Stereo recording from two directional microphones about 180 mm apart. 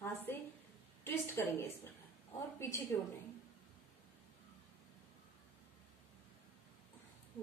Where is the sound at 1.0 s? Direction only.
10° left (ahead or behind).